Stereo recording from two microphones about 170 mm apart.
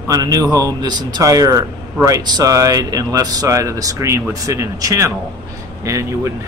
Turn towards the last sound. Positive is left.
turn(degrees=-15)  # may be behind; listen again after turning